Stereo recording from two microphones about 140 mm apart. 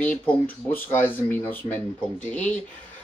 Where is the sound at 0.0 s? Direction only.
10° left (ahead or behind).